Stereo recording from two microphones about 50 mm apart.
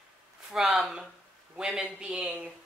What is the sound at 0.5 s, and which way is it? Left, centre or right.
Speech, centre.